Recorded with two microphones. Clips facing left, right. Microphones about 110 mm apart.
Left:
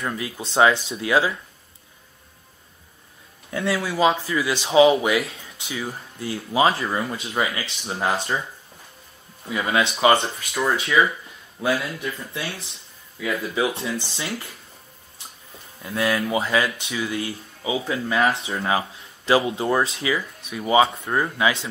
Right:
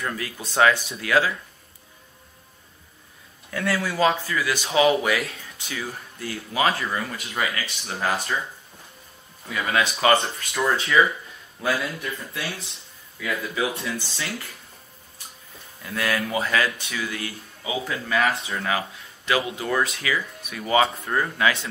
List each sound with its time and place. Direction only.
0.0 s speech: 20° left (ahead or behind)
3.4 s speech: 25° left (ahead or behind)
9.5 s speech: 20° left (ahead or behind)
10.5 s speech: centre (ahead or behind)
13.2 s speech: 25° left (ahead or behind)
15.8 s speech: 20° left (ahead or behind)